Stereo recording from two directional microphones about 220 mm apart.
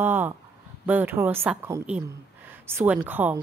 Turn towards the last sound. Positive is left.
turn(degrees=-10)  # may be behind; listen again after turning